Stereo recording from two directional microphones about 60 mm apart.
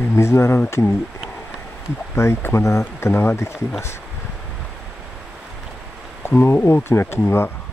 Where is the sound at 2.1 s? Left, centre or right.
Left.